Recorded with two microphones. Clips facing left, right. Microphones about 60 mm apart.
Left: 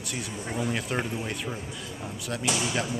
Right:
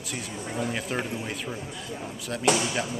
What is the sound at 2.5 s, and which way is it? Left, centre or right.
Speech, right.